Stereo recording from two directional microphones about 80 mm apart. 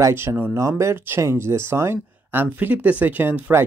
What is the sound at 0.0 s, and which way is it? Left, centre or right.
Speech, right.